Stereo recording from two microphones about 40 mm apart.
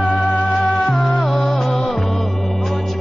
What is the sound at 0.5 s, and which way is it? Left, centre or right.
Music, centre.